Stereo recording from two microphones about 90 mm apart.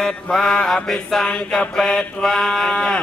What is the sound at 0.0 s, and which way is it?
Mantra, 5° left (ahead or behind).